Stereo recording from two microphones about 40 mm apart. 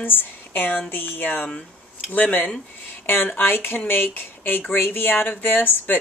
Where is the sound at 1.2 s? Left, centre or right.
Left.